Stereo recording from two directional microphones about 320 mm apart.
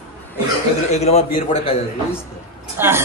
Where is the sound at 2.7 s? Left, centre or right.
Centre.